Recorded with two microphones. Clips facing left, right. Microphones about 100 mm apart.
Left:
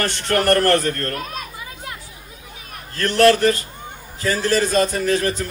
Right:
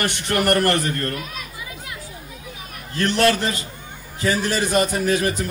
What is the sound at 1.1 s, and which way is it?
Speech, 40° left (ahead or behind).